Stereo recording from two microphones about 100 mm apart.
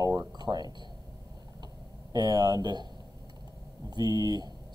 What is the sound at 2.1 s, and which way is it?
Speech, 50° right (ahead or behind).